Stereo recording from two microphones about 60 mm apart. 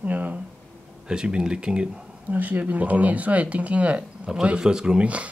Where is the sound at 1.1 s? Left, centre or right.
Centre.